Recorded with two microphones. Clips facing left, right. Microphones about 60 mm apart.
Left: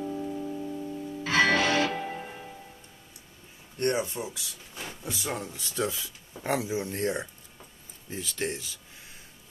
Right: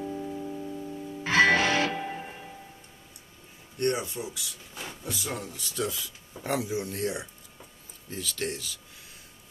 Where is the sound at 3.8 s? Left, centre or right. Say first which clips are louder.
Left 1 dB; left.